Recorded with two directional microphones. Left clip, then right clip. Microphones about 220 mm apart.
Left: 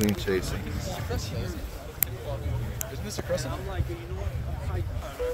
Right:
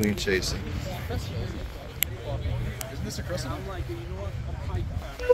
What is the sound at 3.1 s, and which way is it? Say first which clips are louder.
Speech: left 5 dB; 45° left (ahead or behind).